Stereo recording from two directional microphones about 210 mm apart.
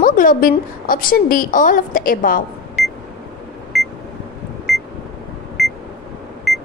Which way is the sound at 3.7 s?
Centre (ahead or behind).